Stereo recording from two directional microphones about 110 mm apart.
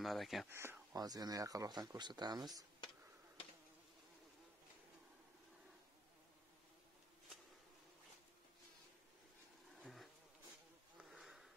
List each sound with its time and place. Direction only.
0.0 s speech: centre (ahead or behind)
0.5 s speech: 20° right (ahead or behind)
0.9 s speech: 35° right (ahead or behind)
9.8 s bee: centre (ahead or behind)
11.1 s a sound: centre (ahead or behind)